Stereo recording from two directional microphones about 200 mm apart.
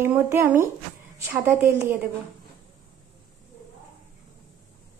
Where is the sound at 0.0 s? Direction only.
10° right (ahead or behind).